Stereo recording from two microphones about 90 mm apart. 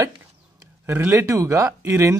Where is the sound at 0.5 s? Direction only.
30° right (ahead or behind).